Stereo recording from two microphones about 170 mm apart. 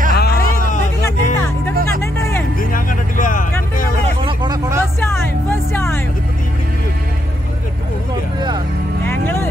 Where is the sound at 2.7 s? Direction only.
50° left (ahead or behind).